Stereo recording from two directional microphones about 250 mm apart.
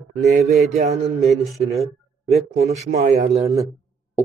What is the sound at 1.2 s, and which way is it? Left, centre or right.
Speech, centre.